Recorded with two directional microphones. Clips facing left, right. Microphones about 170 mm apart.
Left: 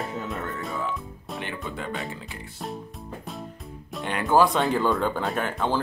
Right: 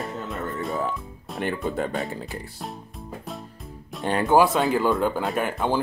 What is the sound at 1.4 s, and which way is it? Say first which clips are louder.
Speech: right 9 dB; 45° right (ahead or behind).